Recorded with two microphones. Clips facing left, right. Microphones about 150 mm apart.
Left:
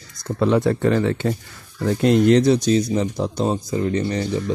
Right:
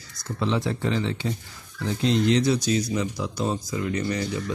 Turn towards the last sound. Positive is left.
turn(degrees=35)  # may be behind; listen again after turning